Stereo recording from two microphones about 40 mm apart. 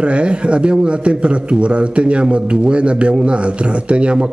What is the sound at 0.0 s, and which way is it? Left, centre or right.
A man's voice, right.